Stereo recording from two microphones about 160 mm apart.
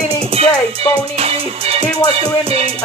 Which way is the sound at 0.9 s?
35° right (ahead or behind).